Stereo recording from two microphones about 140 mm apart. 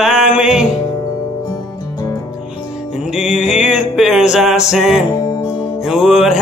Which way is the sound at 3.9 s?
5° right (ahead or behind).